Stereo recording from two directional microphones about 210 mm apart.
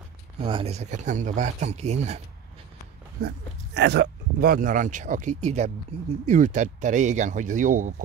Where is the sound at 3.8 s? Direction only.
55° right (ahead or behind).